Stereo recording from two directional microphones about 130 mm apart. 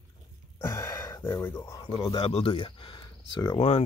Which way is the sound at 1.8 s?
40° left (ahead or behind).